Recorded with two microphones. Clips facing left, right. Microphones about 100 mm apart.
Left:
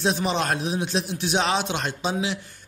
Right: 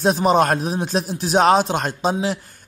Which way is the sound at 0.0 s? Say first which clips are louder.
Right 8 dB; 45° right (ahead or behind).